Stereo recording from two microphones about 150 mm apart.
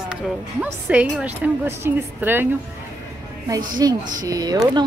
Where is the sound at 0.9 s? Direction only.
10° right (ahead or behind).